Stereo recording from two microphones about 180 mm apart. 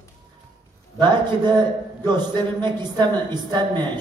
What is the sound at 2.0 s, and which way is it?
A woman's voice, 25° right (ahead or behind).